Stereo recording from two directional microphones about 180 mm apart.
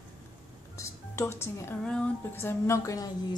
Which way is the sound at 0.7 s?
15° left (ahead or behind).